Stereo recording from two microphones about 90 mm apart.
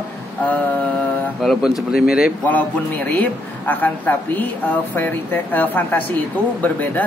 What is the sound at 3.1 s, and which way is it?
A woman's voice, 15° left (ahead or behind).